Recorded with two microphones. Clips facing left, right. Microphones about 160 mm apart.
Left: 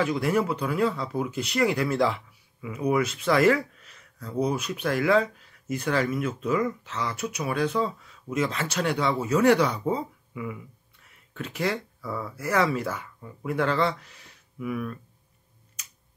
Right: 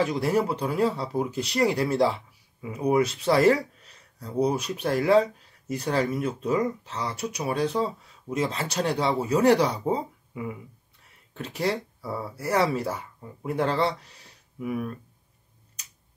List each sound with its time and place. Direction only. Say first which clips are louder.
0.0 s speech: even; 35° right (ahead or behind)